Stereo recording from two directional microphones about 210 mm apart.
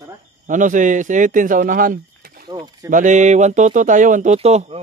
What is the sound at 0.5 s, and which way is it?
Speech, 35° right (ahead or behind).